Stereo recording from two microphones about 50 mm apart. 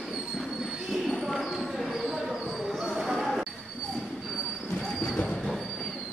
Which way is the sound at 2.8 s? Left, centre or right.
Centre.